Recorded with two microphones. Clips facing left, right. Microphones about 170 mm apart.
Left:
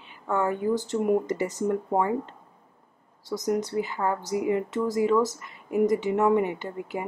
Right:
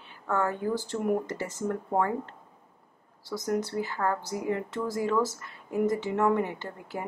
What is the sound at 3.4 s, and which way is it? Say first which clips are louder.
Speech: left 3 dB; 20° left (ahead or behind).